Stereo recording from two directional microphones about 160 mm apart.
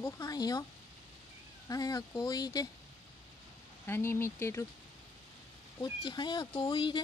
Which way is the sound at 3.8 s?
15° left (ahead or behind).